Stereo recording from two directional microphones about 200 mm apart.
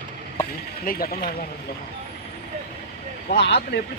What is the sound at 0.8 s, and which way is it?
Speech, 45° left (ahead or behind).